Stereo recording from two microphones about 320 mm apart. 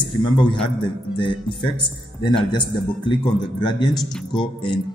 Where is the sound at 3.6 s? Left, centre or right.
Centre.